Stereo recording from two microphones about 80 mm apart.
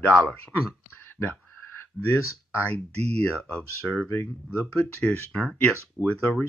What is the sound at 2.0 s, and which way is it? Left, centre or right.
Speech, left.